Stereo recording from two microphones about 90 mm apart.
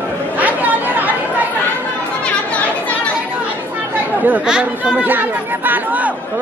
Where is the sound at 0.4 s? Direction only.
20° right (ahead or behind).